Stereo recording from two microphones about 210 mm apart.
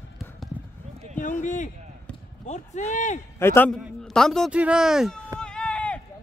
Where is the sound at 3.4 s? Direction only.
10° left (ahead or behind).